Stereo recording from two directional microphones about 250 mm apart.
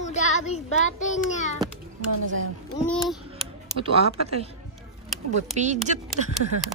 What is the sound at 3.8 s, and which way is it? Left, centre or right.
Speech, right.